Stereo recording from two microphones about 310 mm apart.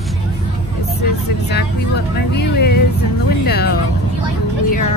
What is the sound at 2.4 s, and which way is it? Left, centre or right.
Speech, left.